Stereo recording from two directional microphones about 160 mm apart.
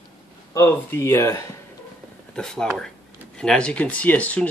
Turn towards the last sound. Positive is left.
turn(degrees=10)  # may be behind; listen again after turning